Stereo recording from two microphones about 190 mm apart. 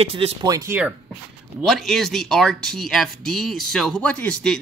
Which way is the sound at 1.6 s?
Centre (ahead or behind).